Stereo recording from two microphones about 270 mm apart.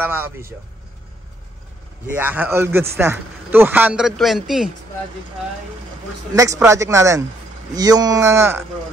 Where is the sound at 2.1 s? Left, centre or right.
Centre.